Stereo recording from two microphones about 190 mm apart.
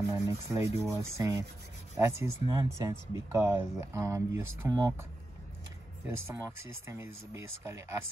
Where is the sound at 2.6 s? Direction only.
15° right (ahead or behind).